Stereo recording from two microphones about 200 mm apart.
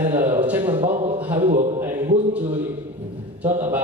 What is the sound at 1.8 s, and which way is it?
Music, 10° right (ahead or behind).